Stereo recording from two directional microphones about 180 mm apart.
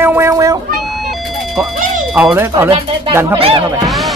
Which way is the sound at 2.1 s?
5° right (ahead or behind).